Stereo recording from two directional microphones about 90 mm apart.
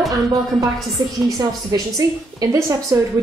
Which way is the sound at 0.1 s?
40° right (ahead or behind).